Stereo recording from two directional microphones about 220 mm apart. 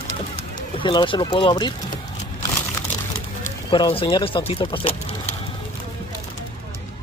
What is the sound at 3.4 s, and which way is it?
Speech, 20° left (ahead or behind).